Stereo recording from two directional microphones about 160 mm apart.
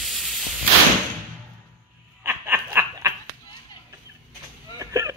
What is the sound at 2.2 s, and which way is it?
Snicker, 15° right (ahead or behind).